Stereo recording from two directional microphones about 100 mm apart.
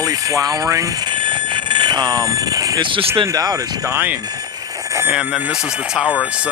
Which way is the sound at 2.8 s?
60° right (ahead or behind).